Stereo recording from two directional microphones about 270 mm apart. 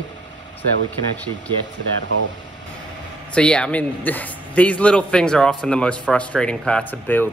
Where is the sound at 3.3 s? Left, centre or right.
Centre.